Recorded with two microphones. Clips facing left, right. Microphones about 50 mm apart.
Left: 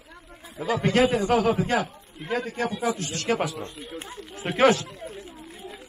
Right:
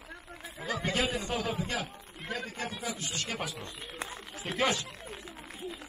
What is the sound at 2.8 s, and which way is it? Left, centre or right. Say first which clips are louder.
Speech: left 9 dB; left.